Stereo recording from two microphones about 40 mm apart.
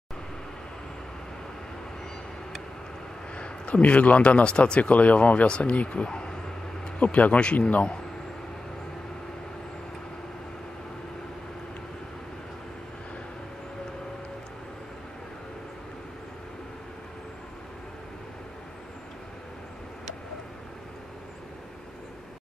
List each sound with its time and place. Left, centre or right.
3.3 s a man's voice: left
7.0 s a man's voice: left